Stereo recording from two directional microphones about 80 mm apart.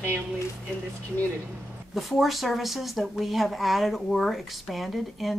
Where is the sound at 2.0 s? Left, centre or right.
Centre.